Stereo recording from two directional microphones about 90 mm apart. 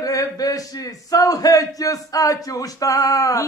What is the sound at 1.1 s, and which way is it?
A man's voice, 40° left (ahead or behind).